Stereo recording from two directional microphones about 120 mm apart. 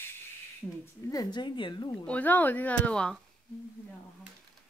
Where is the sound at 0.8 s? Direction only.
30° left (ahead or behind).